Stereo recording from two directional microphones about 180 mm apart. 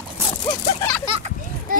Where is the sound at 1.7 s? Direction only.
50° right (ahead or behind).